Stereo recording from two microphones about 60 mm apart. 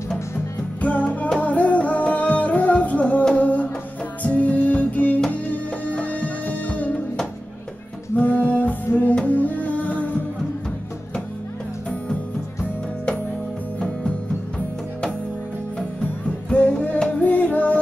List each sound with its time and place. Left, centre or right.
0.7 s music: left
8.2 s music: left
13.7 s music: left
16.5 s music: left